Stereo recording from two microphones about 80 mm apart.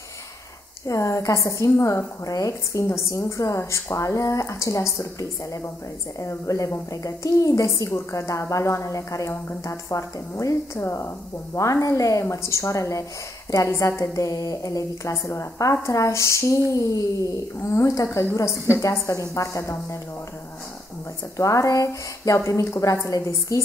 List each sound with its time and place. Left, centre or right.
0.8 s a woman's voice: left
6.1 s a woman's voice: left
21.4 s a woman's voice: left